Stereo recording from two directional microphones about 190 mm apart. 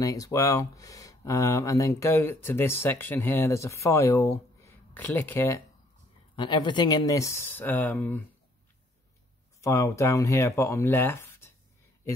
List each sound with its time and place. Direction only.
0.0 s speech: 15° left (ahead or behind)
6.3 s speech: 25° left (ahead or behind); by 8.2 s 10° left (ahead or behind)
9.6 s speech: 15° left (ahead or behind)